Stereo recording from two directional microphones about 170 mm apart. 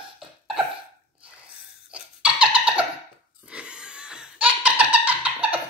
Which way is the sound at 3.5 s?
5° right (ahead or behind).